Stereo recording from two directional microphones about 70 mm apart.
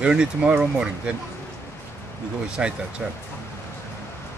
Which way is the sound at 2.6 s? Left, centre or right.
Centre.